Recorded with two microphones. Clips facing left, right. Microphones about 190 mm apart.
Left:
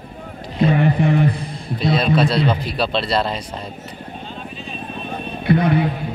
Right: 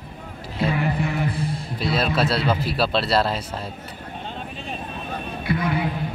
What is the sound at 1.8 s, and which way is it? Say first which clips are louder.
Speech: left 5 dB; 5° right (ahead or behind).